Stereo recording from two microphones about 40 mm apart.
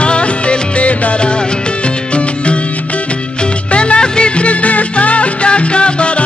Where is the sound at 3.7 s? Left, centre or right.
Left.